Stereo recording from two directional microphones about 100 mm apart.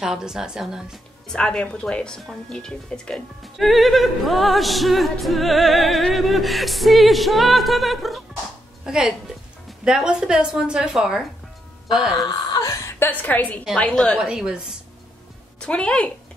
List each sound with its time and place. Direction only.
0.0 s speech: 5° right (ahead or behind)
1.2 s a woman's voice: 5° left (ahead or behind)
12.2 s a sound: 40° left (ahead or behind)
13.1 s a woman's voice: 15° left (ahead or behind)
14.1 s a woman's voice: 5° right (ahead or behind)
15.6 s a woman's voice: 10° left (ahead or behind)